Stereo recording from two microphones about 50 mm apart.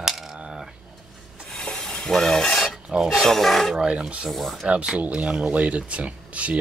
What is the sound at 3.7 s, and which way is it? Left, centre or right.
Speech, centre.